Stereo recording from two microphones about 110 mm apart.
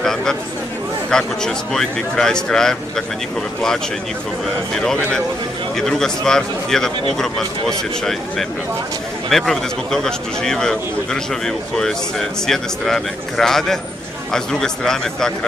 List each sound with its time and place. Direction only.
0.0 s a man's voice: 5° left (ahead or behind)
5.8 s a man's voice: 5° left (ahead or behind)